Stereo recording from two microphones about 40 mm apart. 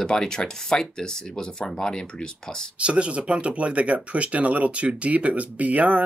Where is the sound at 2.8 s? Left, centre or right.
Right.